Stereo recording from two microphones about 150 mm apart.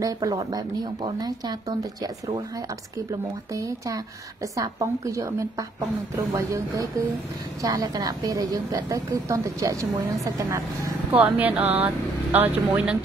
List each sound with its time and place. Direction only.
0.0 s a woman's voice: 20° right (ahead or behind)
3.5 s a woman's voice: 20° right (ahead or behind)